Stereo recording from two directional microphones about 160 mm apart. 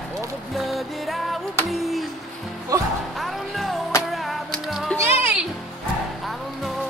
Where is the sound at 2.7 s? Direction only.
20° right (ahead or behind).